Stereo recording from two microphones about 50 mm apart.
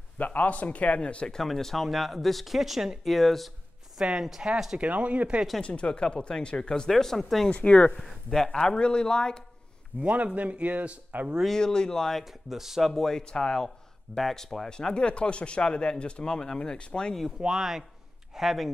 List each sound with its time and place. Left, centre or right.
0.2 s speech: left; by 3.5 s centre
4.0 s speech: centre
4.7 s speech: right
5.6 s speech: left; by 7.4 s centre
7.5 s speech: left
8.0 s speech: centre
8.5 s speech: centre
10.0 s speech: right
11.4 s speech: centre
12.4 s speech: centre
12.9 s speech: centre
17.4 s speech: centre